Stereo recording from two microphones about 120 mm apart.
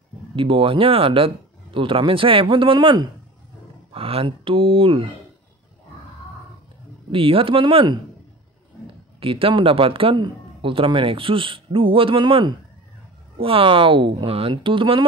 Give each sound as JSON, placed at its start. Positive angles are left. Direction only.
{"t": 0.4, "sound": "speech", "side_deg": -50}
{"t": 7.1, "sound": "speech", "side_deg": -50}
{"t": 9.2, "sound": "speech", "side_deg": -50}